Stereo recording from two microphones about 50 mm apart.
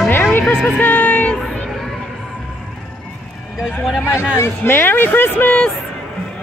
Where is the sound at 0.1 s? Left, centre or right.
Left.